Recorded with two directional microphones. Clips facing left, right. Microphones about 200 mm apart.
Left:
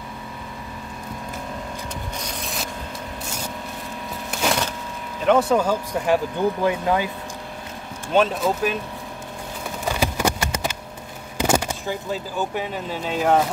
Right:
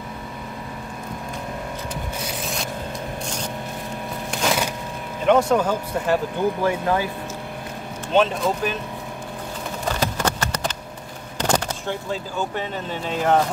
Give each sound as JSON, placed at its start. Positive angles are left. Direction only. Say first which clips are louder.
{"t": 2.1, "sound": "vehicle", "louder": "right 2 dB", "side_deg": -5}
{"t": 4.3, "sound": "a sound", "louder": "even", "side_deg": 5}
{"t": 5.2, "sound": "speech", "louder": "even", "side_deg": 0}
{"t": 8.1, "sound": "speech", "louder": "even", "side_deg": 5}
{"t": 9.8, "sound": "a sound", "louder": "left 1 dB", "side_deg": 10}
{"t": 11.3, "sound": "speech", "louder": "left 2 dB", "side_deg": 10}